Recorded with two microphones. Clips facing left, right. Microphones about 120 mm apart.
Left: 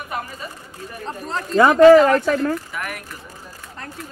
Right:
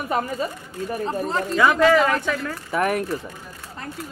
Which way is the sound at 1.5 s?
35° left (ahead or behind).